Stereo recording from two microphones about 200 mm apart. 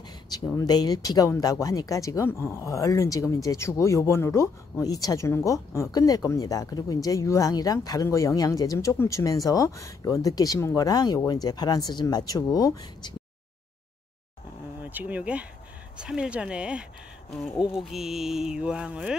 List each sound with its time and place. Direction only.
0.5 s speech: 20° left (ahead or behind)
14.8 s speech: 10° right (ahead or behind)